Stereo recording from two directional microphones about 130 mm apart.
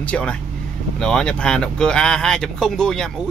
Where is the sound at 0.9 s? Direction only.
5° left (ahead or behind).